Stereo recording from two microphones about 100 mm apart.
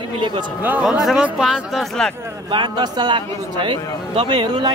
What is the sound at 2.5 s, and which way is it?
Speech, 50° right (ahead or behind).